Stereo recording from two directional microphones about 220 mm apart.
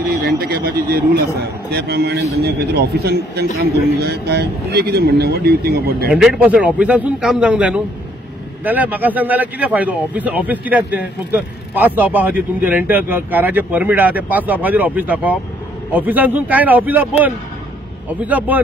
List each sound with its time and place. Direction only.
0.2 s speech: 45° right (ahead or behind)
6.1 s a man's voice: 5° right (ahead or behind)